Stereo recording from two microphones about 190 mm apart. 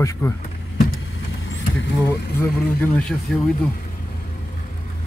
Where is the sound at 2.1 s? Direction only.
10° left (ahead or behind).